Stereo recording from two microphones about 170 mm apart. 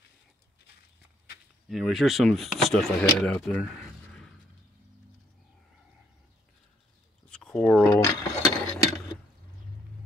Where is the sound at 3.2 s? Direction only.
5° left (ahead or behind).